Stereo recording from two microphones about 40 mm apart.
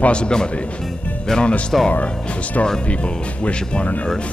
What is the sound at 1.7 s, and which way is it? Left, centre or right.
Speech, centre.